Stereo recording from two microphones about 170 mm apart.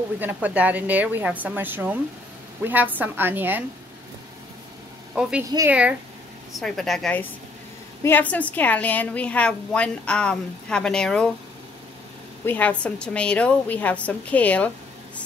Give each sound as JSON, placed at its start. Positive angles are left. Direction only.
{"t": 0.2, "sound": "a woman's voice", "side_deg": -10}
{"t": 5.2, "sound": "a woman's voice", "side_deg": -5}
{"t": 6.5, "sound": "a woman's voice", "side_deg": 0}
{"t": 12.4, "sound": "a woman's voice", "side_deg": 10}